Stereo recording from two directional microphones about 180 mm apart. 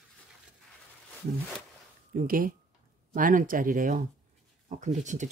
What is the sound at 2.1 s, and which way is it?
Speech, 50° right (ahead or behind).